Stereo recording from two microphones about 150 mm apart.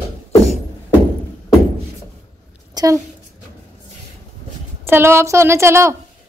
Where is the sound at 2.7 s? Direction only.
25° right (ahead or behind).